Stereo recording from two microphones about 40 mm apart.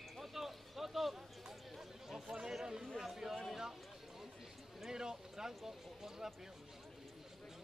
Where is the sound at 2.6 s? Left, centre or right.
Centre.